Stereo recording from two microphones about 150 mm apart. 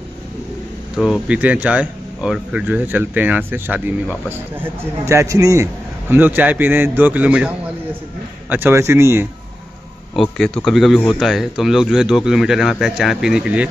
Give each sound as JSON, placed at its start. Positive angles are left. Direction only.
{"t": 0.9, "sound": "speech", "side_deg": -5}
{"t": 10.1, "sound": "speech", "side_deg": 0}